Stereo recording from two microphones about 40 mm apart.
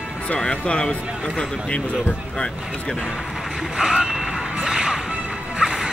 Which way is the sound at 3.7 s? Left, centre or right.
Centre.